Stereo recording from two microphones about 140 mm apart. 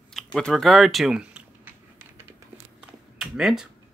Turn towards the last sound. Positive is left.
turn(degrees=-5)  # may be behind; listen again after turning